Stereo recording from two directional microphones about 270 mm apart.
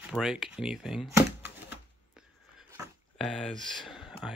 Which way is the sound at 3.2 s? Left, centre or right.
Centre.